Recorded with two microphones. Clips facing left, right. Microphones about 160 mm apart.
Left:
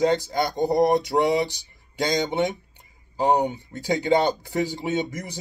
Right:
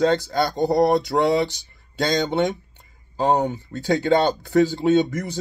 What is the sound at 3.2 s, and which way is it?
Speech, 15° left (ahead or behind).